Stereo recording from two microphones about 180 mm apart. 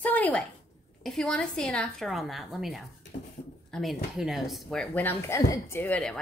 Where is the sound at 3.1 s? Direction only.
35° left (ahead or behind).